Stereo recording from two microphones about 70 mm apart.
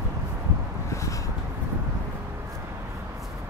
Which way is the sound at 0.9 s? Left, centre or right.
Left.